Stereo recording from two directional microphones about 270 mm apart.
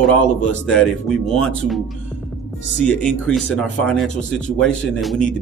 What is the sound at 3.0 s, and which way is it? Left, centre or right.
Speech, centre.